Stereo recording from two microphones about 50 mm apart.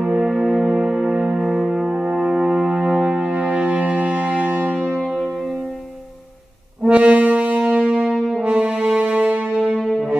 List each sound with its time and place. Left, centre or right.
0.0 s music: centre
0.3 s music: centre; by 1.4 s right
1.4 s music: centre; by 4.6 s right
5.0 s music: centre
6.8 s brass instrument: right
8.7 s music: right
9.8 s music: centre